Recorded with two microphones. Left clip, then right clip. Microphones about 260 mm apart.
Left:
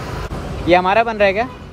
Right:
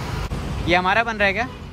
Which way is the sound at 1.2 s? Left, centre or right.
Right.